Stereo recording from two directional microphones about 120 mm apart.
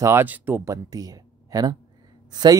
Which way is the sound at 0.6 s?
30° right (ahead or behind).